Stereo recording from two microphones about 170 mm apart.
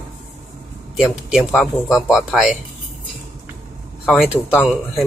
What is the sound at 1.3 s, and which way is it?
Speech, 5° right (ahead or behind).